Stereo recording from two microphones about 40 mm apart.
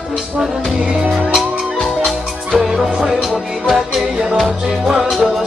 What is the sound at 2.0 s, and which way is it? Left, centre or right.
Music, centre.